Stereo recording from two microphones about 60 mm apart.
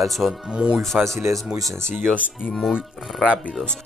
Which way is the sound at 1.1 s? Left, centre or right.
Right.